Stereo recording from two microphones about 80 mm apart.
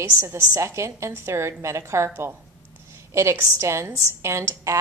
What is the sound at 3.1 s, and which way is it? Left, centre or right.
A woman's voice, right.